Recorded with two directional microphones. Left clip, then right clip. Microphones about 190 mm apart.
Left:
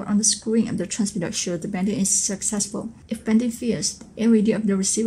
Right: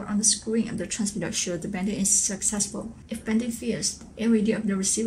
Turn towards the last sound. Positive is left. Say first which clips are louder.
# left 4 dB
turn(degrees=20)  # may be behind; listen again after turning